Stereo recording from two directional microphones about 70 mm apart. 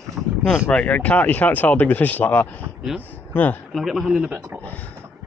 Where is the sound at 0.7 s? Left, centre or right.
Centre.